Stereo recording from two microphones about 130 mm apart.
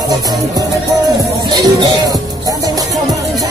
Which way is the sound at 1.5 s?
30° right (ahead or behind).